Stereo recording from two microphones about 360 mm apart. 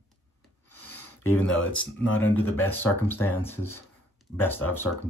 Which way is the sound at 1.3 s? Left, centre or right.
Centre.